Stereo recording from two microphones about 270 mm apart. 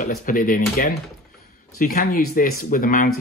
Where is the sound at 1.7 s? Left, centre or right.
Left.